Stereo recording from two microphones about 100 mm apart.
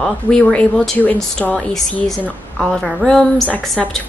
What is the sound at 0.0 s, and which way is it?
A woman's voice, 10° left (ahead or behind).